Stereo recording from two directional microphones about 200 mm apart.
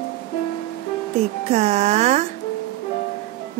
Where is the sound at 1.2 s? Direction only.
35° right (ahead or behind).